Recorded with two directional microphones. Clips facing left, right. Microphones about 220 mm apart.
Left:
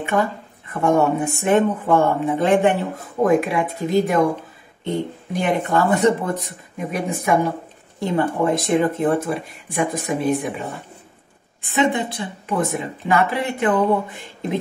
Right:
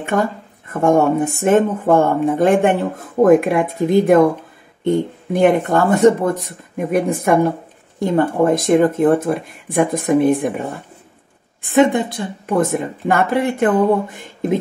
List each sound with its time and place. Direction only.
0.0 s speech: 45° right (ahead or behind)
11.6 s speech: 50° right (ahead or behind)